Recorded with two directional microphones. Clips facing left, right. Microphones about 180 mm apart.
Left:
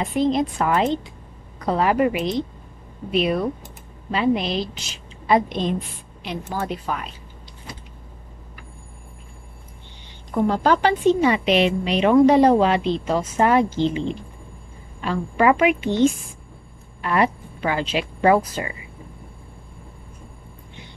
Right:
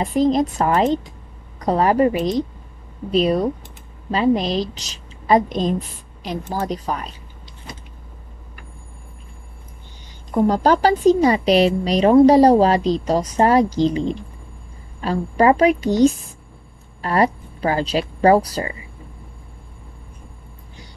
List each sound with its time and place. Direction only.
0.0 s a woman's voice: 40° right (ahead or behind)
10.3 s a woman's voice: 40° right (ahead or behind)